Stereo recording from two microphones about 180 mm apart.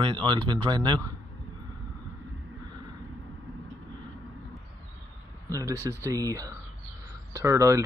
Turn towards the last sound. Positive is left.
turn(degrees=-15)  # may be behind; listen again after turning